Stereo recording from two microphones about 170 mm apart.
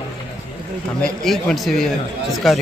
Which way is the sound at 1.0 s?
Centre (ahead or behind).